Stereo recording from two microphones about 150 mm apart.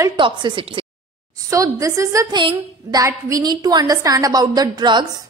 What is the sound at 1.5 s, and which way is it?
A woman's voice, 20° right (ahead or behind).